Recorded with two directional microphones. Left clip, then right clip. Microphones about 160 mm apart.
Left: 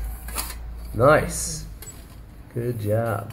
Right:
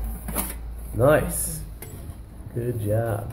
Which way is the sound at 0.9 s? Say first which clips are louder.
Left 2 dB; 5° left (ahead or behind).